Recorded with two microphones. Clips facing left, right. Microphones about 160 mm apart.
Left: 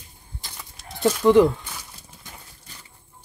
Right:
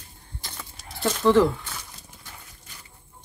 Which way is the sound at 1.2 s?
15° left (ahead or behind).